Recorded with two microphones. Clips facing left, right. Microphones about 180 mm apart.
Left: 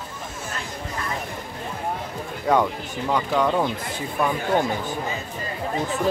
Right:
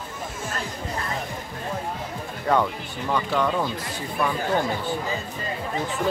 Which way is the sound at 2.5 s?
20° left (ahead or behind).